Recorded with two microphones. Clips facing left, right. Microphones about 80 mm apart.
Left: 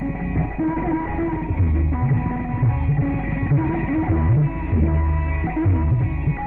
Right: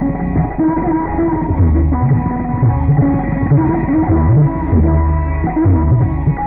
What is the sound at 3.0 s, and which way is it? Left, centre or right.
Music, right.